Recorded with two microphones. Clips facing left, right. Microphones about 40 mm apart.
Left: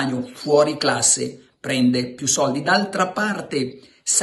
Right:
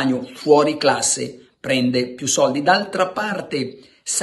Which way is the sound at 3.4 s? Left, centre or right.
Right.